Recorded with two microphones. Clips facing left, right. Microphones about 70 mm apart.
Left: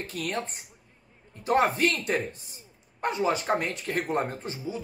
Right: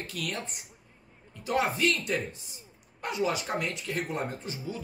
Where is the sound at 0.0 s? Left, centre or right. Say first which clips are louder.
Left 4 dB; left.